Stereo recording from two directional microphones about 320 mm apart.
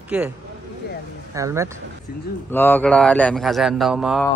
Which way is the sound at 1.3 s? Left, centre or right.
Centre.